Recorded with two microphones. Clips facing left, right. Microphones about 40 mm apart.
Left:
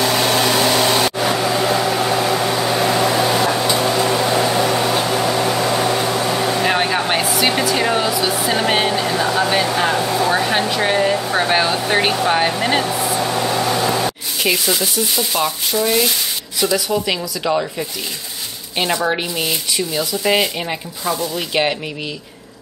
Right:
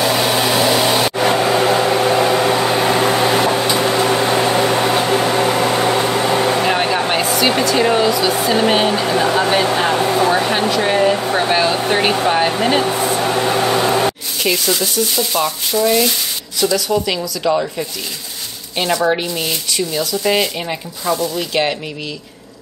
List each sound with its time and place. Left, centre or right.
0.0 s vacuum cleaner: centre
1.1 s microwave oven: right
4.6 s a sound: right
4.9 s vehicle: right
6.6 s music: centre
7.7 s speech: centre
9.0 s speech: centre
9.5 s speech: centre
9.9 s speech: right
10.7 s speech: centre
13.0 s vehicle: right
14.4 s speech: centre
19.0 s speech: centre